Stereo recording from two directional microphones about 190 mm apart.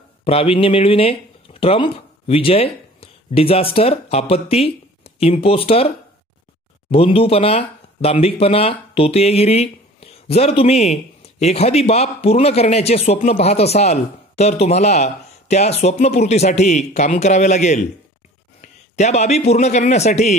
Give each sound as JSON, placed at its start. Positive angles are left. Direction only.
{"t": 0.2, "sound": "a man's voice", "side_deg": 30}